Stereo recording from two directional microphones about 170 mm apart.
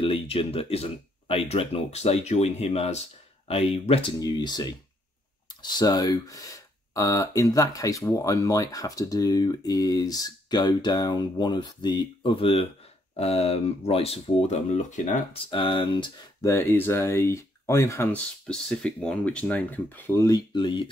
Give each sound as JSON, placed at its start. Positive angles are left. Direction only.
{"t": 0.0, "sound": "speech", "side_deg": 30}
{"t": 15.5, "sound": "speech", "side_deg": 30}
{"t": 16.4, "sound": "speech", "side_deg": 15}